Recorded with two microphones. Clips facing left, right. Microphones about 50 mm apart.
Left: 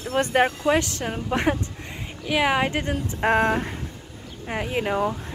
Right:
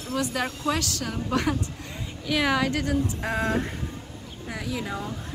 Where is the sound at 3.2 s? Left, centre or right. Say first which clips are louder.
Left 8 dB; left.